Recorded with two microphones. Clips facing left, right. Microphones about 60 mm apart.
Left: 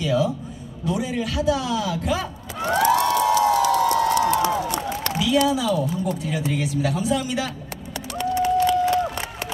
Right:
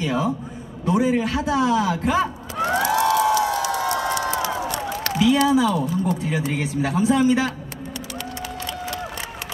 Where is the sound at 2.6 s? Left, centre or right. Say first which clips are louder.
Even; centre.